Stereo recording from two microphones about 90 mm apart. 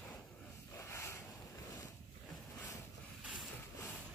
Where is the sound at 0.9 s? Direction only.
30° left (ahead or behind).